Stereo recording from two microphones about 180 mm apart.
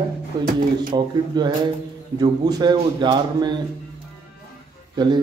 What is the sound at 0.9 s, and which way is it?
A man's voice, 25° right (ahead or behind).